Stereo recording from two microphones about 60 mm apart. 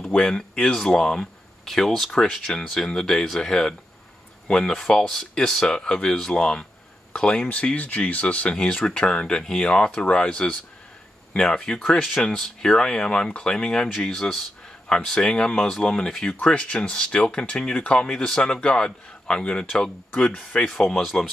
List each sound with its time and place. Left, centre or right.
0.0 s speech: centre
7.4 s speech: left
21.0 s speech: centre